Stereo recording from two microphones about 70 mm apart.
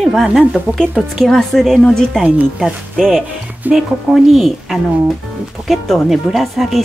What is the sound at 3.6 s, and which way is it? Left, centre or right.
Speech, right.